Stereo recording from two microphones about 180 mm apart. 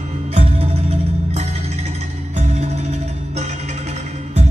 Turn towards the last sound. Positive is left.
turn(degrees=-40)  # may be behind; listen again after turning